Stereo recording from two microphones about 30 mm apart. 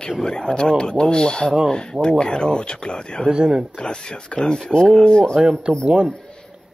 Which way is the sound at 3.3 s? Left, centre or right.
Right.